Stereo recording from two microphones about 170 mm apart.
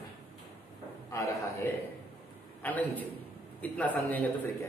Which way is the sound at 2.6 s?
10° left (ahead or behind).